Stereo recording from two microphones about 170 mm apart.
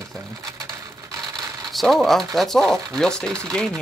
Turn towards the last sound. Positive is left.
turn(degrees=5)  # may be behind; listen again after turning